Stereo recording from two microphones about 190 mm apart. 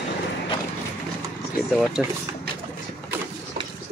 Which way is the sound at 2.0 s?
5° right (ahead or behind).